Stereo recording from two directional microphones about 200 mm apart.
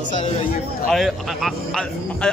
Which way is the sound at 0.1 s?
35° left (ahead or behind).